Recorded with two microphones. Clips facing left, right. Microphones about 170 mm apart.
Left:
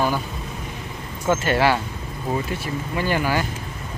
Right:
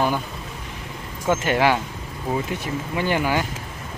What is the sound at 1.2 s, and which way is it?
Speech, 15° right (ahead or behind).